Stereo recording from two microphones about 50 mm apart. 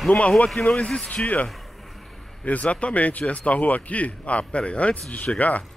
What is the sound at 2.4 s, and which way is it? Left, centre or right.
A man's voice, left.